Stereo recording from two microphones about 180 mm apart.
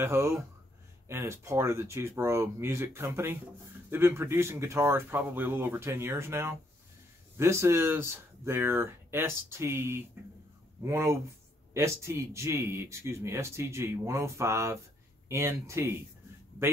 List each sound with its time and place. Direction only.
0.0 s speech: 15° right (ahead or behind)